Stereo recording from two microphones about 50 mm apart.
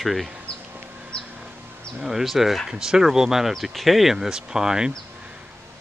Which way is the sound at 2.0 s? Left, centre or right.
Centre.